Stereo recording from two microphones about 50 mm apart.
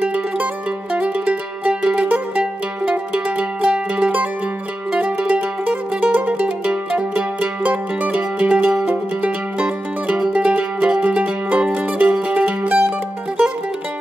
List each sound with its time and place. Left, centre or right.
0.0 s music: right
4.9 s mandolin: right